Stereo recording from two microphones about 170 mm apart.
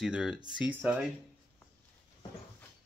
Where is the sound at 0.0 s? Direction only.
5° right (ahead or behind).